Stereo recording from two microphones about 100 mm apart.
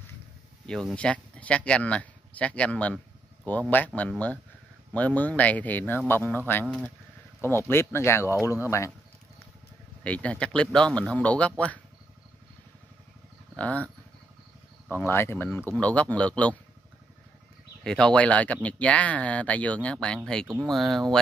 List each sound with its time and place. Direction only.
0.7 s speech: 5° left (ahead or behind); by 8.9 s 30° left (ahead or behind)
10.0 s speech: 15° left (ahead or behind)
13.6 s speech: 15° left (ahead or behind)
14.9 s speech: 20° left (ahead or behind)
17.8 s speech: 10° left (ahead or behind)